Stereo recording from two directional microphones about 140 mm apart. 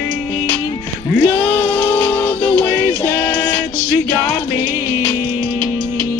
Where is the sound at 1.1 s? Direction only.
10° left (ahead or behind).